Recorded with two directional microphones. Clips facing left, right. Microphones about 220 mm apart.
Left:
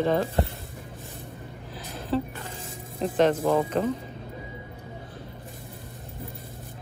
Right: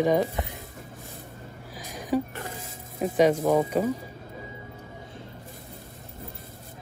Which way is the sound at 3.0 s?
10° right (ahead or behind).